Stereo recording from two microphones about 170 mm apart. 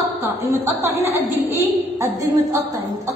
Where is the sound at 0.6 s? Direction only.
15° right (ahead or behind).